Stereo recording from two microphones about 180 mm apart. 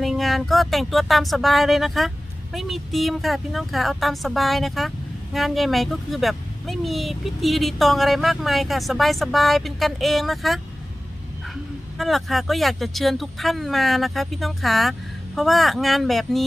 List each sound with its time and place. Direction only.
0.0 s speech: centre (ahead or behind)
12.0 s speech: centre (ahead or behind)